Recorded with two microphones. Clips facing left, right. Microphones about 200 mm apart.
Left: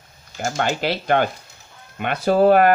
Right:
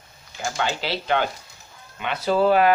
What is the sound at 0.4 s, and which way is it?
Speech, 50° left (ahead or behind).